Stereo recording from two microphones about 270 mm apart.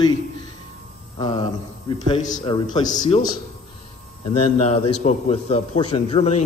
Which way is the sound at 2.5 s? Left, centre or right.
Centre.